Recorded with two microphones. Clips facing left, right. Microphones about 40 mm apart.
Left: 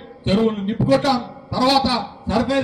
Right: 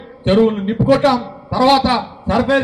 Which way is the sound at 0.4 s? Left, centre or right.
Right.